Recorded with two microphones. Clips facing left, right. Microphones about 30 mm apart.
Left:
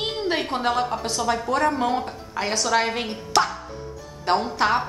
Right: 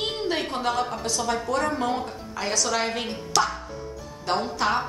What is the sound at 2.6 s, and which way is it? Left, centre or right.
Speech, centre.